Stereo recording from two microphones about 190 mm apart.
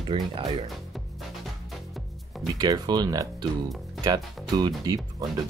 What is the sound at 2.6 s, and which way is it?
Speech, 20° right (ahead or behind).